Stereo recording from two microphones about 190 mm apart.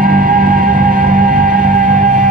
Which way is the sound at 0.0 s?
45° right (ahead or behind).